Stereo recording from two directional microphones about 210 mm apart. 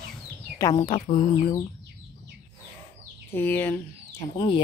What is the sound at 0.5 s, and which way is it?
Speech, 15° left (ahead or behind).